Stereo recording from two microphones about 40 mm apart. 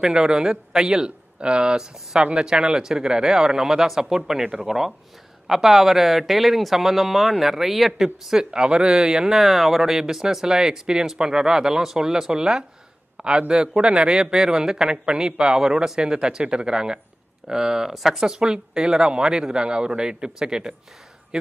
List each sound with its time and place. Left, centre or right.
0.0 s a man's voice: centre
9.3 s a man's voice: centre
18.2 s a man's voice: centre